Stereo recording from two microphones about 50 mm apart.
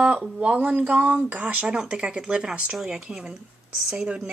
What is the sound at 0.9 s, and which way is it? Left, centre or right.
Speech, right.